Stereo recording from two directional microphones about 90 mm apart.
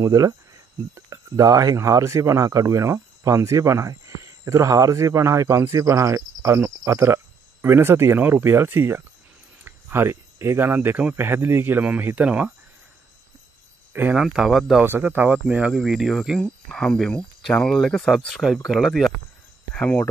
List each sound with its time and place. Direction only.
0.0 s speech: 40° right (ahead or behind); by 12.5 s 10° right (ahead or behind)
14.1 s speech: 5° right (ahead or behind)
14.8 s speech: 25° right (ahead or behind); by 19.1 s centre (ahead or behind)
19.7 s speech: 15° left (ahead or behind)